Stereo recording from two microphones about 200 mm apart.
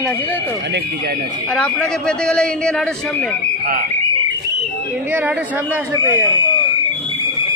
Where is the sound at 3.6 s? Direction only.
45° right (ahead or behind).